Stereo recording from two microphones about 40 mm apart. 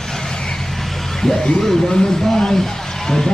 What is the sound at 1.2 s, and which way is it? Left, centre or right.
A man's voice, centre.